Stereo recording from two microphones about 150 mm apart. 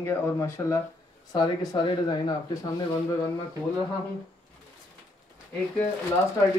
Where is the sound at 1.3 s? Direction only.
30° left (ahead or behind).